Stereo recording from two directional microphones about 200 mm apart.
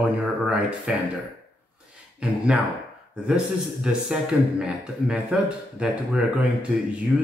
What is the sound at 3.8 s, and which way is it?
A man's voice, 5° right (ahead or behind).